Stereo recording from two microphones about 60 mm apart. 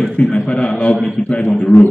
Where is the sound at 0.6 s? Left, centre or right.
Left.